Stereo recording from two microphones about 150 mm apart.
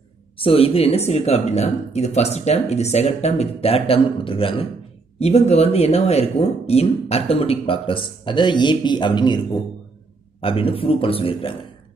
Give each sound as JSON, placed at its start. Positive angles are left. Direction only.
{"t": 0.4, "sound": "speech", "side_deg": 40}
{"t": 10.4, "sound": "speech", "side_deg": 40}